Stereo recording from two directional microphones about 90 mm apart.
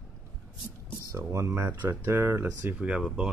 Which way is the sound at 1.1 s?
35° right (ahead or behind).